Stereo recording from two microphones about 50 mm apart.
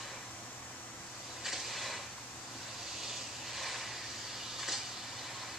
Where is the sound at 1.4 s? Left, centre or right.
Centre.